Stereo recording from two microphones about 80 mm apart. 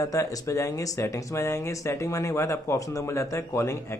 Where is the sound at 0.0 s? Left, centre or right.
Left.